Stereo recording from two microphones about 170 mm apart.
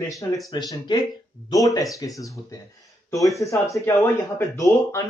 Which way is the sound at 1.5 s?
20° left (ahead or behind).